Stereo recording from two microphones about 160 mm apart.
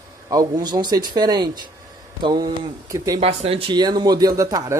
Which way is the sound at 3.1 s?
40° right (ahead or behind).